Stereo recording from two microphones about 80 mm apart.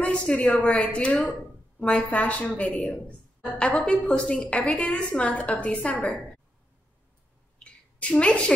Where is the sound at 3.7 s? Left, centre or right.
Centre.